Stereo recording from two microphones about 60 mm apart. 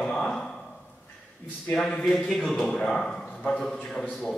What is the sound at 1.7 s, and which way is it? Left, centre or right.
A man's voice, centre.